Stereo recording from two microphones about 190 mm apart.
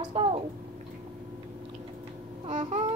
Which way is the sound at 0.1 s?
30° right (ahead or behind).